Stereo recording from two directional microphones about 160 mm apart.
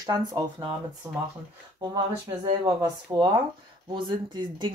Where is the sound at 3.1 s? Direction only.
20° right (ahead or behind).